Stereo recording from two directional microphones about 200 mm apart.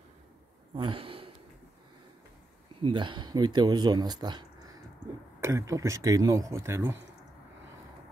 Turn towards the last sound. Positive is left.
turn(degrees=-15)  # may be behind; listen again after turning